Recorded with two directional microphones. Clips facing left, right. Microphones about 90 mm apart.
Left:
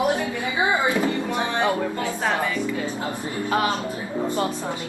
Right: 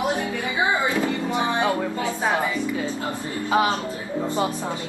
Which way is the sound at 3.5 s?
20° right (ahead or behind).